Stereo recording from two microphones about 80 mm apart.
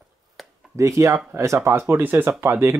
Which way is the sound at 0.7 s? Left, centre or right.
Right.